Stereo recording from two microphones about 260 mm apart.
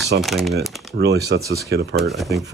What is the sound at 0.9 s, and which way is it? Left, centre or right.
Speech, right.